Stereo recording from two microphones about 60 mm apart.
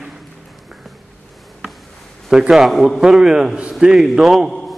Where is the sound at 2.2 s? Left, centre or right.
Centre.